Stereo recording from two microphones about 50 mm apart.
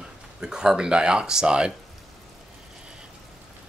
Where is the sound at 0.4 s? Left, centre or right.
Centre.